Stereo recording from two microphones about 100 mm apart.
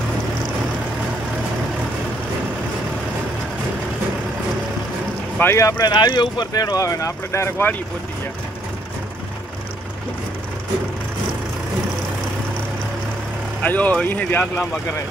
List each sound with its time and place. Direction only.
5.4 s speech: 30° left (ahead or behind)
5.9 s speech: 45° left (ahead or behind); by 7.7 s 25° left (ahead or behind)
13.6 s speech: 15° left (ahead or behind)